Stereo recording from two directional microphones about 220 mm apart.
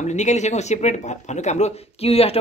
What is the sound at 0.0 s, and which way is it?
A woman's voice, 30° left (ahead or behind).